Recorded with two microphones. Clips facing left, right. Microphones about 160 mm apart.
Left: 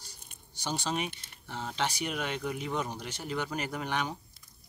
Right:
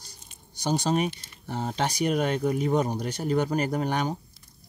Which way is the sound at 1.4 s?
45° right (ahead or behind).